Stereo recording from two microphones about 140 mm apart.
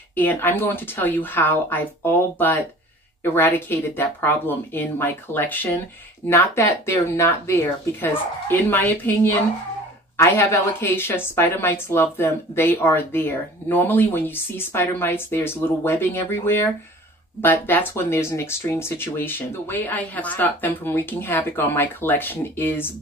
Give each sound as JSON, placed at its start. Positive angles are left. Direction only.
{"t": 0.1, "sound": "a woman's voice", "side_deg": 15}